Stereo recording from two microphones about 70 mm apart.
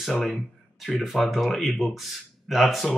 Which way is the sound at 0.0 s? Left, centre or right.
Centre.